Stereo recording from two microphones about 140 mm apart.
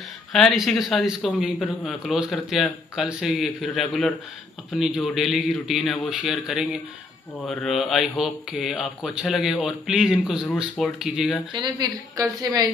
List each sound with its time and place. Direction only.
0.3 s speech: centre (ahead or behind)
1.6 s a man's voice: 10° left (ahead or behind)
1.9 s speech: centre (ahead or behind)
11.5 s a woman's voice: 30° right (ahead or behind)